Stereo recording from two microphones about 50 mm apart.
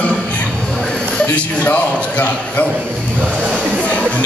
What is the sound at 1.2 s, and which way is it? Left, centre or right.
A man's voice, left.